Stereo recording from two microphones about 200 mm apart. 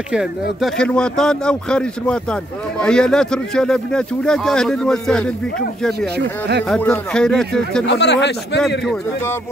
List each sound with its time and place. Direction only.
0.1 s speech: centre (ahead or behind)
5.9 s speech: 55° right (ahead or behind)
6.7 s speech: 5° left (ahead or behind)
7.8 s speech: 60° left (ahead or behind)
8.5 s speech: centre (ahead or behind)